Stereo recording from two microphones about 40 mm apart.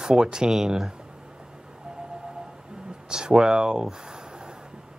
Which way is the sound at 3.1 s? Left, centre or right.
Centre.